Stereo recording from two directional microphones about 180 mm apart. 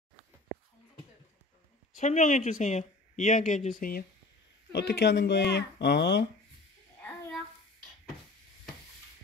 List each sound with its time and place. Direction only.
2.0 s speech: 45° left (ahead or behind)
4.7 s speech: 65° left (ahead or behind)